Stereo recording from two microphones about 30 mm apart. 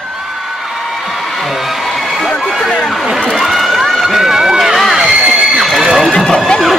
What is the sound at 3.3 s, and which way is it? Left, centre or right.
Run, centre.